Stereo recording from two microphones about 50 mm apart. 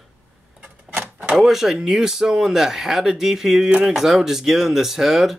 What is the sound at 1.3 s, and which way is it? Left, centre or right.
Speech, centre.